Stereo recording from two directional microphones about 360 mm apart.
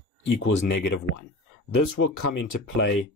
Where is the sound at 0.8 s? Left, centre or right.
Left.